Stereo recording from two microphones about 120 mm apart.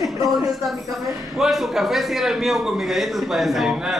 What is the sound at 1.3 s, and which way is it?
A man's voice, centre (ahead or behind).